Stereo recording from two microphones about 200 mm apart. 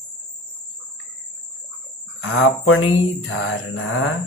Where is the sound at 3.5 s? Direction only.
80° left.